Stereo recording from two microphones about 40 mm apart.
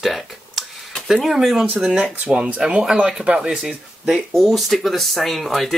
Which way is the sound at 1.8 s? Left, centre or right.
Right.